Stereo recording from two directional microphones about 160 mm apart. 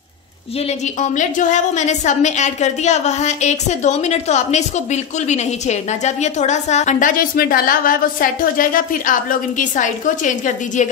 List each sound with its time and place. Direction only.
0.7 s a woman's voice: 50° left (ahead or behind)